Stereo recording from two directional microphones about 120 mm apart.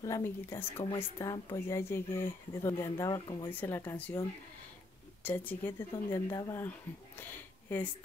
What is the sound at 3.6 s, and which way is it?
Speech, 20° left (ahead or behind).